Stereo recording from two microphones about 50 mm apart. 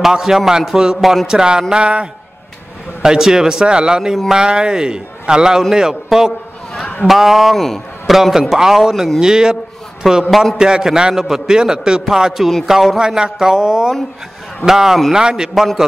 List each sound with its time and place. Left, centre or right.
0.0 s a man's voice: centre
8.2 s a man's voice: centre
10.3 s a man's voice: centre
10.6 s a man's voice: centre
15.5 s a man's voice: centre